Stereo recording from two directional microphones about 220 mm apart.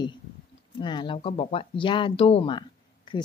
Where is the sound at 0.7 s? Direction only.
20° left (ahead or behind).